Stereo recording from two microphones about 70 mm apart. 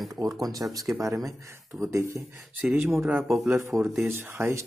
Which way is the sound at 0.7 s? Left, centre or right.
Right.